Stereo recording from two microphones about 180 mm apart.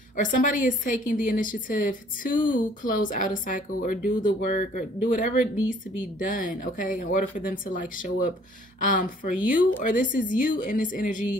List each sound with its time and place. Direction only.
0.1 s a woman's voice: 45° left (ahead or behind)